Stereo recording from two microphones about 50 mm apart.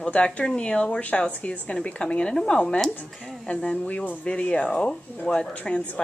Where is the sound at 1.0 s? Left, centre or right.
Left.